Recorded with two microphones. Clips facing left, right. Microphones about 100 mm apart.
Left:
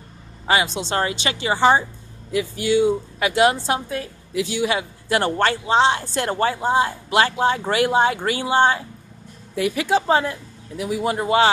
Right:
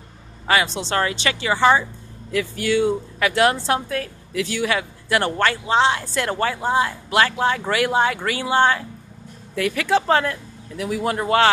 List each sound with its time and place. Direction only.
0.5 s a woman's voice: 20° left (ahead or behind)